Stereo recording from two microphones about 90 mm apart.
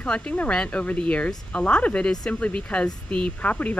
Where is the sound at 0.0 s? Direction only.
15° left (ahead or behind).